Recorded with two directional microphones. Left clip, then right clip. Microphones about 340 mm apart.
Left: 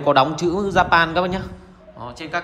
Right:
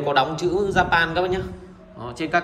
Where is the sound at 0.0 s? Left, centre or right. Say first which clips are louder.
Left 4 dB; centre.